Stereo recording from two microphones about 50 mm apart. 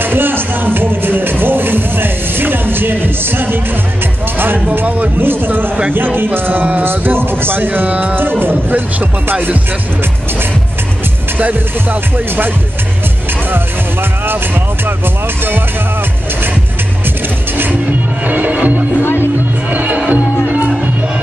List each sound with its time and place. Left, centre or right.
0.0 s music: right
0.7 s speech: right
4.8 s music: right
5.2 s speech: right
7.6 s music: right
8.2 s speech: right
11.3 s music: right
18.2 s music: right